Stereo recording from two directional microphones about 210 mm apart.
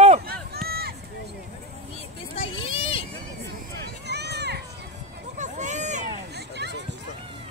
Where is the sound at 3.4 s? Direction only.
50° right (ahead or behind).